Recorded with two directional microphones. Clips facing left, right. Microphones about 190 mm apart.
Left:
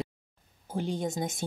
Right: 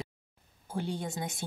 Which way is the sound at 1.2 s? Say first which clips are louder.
Left 4 dB; 45° left (ahead or behind).